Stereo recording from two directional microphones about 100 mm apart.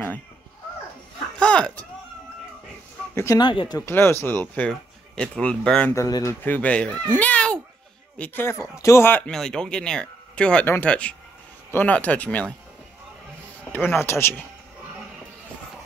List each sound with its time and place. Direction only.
1.4 s a sound: 10° left (ahead or behind)
3.3 s speech: 45° left (ahead or behind)
3.8 s speech: 25° left (ahead or behind)
4.6 s speech: 10° left (ahead or behind)
6.0 s speech: 40° left (ahead or behind)
6.4 s speech: 15° left (ahead or behind)
7.1 s a sound: 15° left (ahead or behind)
8.2 s speech: 20° left (ahead or behind)
9.2 s speech: 5° left (ahead or behind)
13.7 s speech: 20° left (ahead or behind)